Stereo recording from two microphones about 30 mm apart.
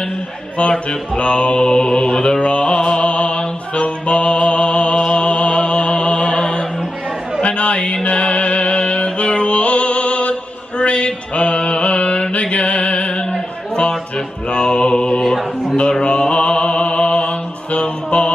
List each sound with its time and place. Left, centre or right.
0.6 s mantra: left
2.4 s mantra: left
2.8 s music: left
7.4 s chatter: left
8.1 s music: left
10.8 s mantra: left
12.2 s music: left
14.5 s mantra: left
17.7 s music: left